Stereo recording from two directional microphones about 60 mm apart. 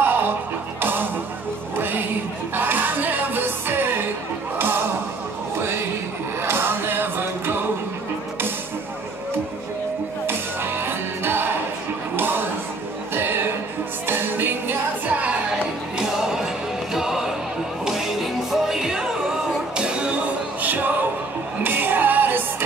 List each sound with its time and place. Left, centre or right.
0.0 s music: right
2.5 s music: right
6.4 s music: right
10.2 s music: right
13.1 s a sound: right
14.0 s music: right
16.0 s music: centre
18.5 s music: centre
20.6 s music: right